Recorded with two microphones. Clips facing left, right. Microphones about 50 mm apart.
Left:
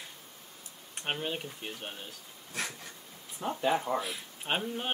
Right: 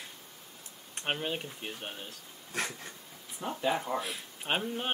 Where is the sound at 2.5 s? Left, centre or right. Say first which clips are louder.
Right 2 dB; right.